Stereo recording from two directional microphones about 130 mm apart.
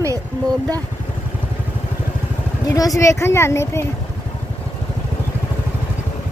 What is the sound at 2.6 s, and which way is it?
A woman's voice, 25° left (ahead or behind).